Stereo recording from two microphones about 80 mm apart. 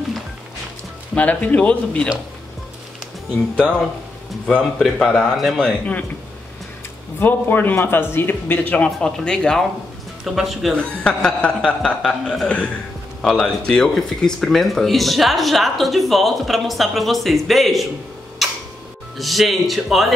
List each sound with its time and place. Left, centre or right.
1.1 s speech: centre
3.5 s speech: centre
7.2 s a man's voice: left
8.8 s speech: centre
10.2 s speech: centre
10.8 s speech: centre
12.4 s speech: centre
18.4 s tick-tock: centre
19.1 s speech: centre